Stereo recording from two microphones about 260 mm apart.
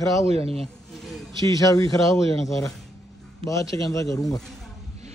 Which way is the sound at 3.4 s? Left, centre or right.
Centre.